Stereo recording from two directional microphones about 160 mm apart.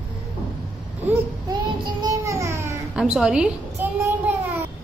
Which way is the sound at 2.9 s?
5° right (ahead or behind).